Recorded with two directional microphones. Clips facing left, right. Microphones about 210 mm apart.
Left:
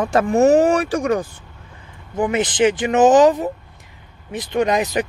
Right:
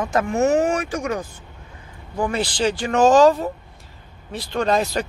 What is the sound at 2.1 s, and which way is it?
Speech, 20° left (ahead or behind).